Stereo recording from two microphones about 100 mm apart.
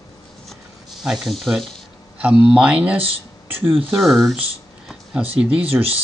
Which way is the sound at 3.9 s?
5° right (ahead or behind).